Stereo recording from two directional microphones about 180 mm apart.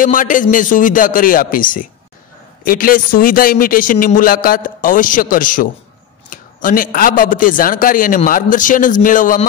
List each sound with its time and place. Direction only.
0.0 s a man's voice: 50° left (ahead or behind)